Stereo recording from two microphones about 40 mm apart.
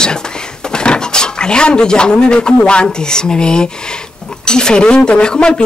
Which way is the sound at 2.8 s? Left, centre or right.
Centre.